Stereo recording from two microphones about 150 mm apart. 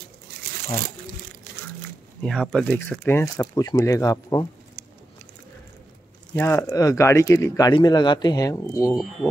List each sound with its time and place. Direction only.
0.3 s a sound: 90° right
2.2 s speech: 5° left (ahead or behind); by 4.5 s 25° left (ahead or behind)
6.3 s speech: 15° left (ahead or behind)